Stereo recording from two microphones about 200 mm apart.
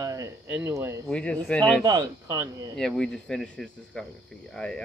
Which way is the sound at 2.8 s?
5° left (ahead or behind).